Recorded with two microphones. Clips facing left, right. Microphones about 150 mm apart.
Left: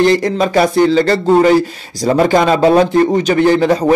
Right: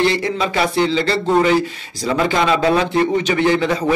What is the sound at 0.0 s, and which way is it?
Speech, 45° left (ahead or behind).